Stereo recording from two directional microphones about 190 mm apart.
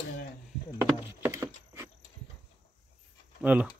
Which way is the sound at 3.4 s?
5° right (ahead or behind).